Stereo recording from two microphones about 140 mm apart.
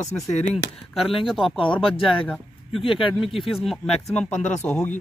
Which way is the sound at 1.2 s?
Centre (ahead or behind).